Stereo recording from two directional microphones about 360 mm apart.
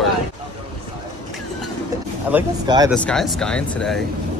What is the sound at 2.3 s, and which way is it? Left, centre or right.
Speech, centre.